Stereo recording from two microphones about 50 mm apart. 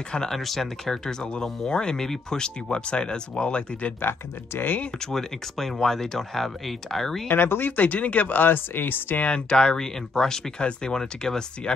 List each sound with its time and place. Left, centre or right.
0.3 s speech: centre; by 3.9 s left
4.0 s speech: left
5.0 s speech: centre
7.2 s speech: left
7.7 s speech: left
9.2 s speech: centre